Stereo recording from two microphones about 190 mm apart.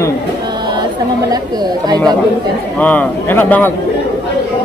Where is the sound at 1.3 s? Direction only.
20° right (ahead or behind).